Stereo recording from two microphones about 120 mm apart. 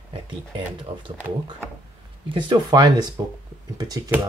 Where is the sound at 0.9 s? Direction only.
55° right (ahead or behind).